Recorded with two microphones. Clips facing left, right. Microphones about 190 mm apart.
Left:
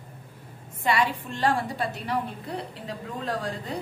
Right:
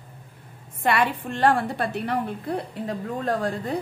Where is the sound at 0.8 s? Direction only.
60° right (ahead or behind).